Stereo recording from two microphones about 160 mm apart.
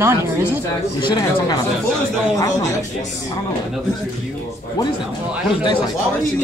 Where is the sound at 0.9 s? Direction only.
30° left (ahead or behind).